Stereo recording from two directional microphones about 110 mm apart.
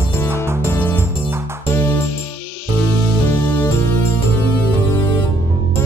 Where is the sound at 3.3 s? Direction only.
20° left (ahead or behind).